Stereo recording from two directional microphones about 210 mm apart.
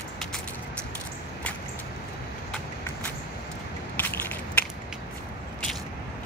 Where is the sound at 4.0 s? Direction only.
10° left (ahead or behind).